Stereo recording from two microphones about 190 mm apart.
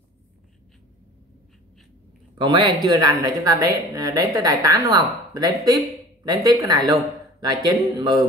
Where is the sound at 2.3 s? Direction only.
25° right (ahead or behind).